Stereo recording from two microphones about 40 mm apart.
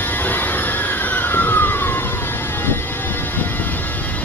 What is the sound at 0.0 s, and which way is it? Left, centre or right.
Vehicle, left.